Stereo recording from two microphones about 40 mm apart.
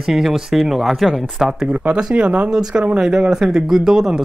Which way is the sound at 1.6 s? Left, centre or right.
Right.